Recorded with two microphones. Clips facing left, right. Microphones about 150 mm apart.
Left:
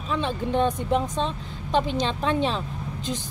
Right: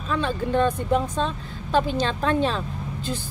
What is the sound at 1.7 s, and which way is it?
Speech, 20° left (ahead or behind).